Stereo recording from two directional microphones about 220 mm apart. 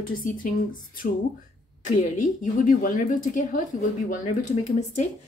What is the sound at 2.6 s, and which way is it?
A woman's voice, 40° left (ahead or behind).